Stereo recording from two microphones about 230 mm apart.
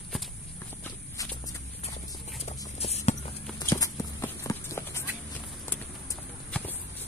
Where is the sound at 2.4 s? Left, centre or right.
Left.